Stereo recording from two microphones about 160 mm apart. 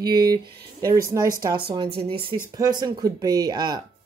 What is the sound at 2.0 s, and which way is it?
Speech, 35° right (ahead or behind).